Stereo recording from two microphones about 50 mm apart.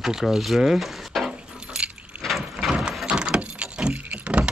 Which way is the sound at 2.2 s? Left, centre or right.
Centre.